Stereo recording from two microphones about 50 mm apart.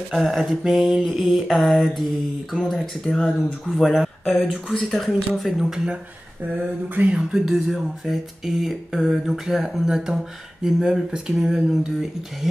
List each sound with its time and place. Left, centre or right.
0.1 s mantra: centre
4.7 s speech: centre
5.3 s mantra: centre
7.0 s speech: right
7.3 s speech: centre